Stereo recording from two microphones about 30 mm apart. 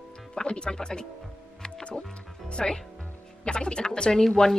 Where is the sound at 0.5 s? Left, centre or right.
Left.